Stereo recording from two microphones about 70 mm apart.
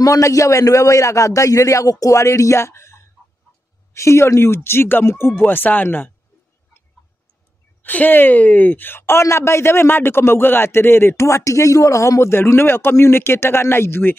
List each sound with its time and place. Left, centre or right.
0.0 s a man's voice: left
7.8 s speech: left
12.3 s speech: left